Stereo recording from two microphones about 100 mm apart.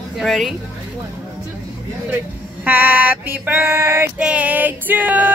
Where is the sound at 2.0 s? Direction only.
20° right (ahead or behind).